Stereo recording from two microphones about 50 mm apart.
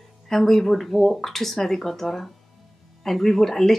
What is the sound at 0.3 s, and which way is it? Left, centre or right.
Speech, centre.